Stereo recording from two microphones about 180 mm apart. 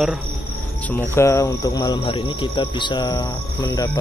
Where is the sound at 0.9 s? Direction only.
15° left (ahead or behind).